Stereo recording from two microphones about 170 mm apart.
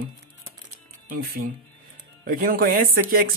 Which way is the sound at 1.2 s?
60° right (ahead or behind).